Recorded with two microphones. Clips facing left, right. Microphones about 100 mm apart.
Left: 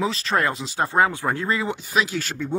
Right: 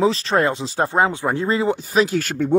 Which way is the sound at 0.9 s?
20° right (ahead or behind).